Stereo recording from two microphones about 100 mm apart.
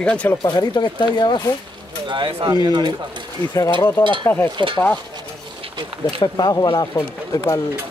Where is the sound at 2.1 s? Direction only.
55° right (ahead or behind).